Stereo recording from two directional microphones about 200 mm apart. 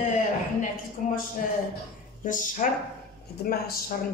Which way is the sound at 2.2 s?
40° left (ahead or behind).